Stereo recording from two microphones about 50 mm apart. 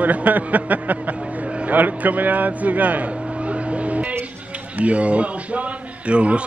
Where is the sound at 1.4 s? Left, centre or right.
Right.